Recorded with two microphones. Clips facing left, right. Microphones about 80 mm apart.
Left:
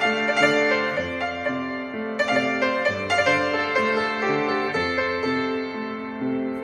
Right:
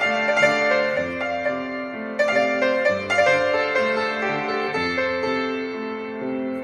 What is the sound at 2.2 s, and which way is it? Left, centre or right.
Music, centre.